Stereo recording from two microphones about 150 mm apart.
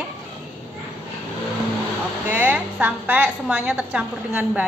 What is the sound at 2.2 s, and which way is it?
A woman's voice, 10° right (ahead or behind).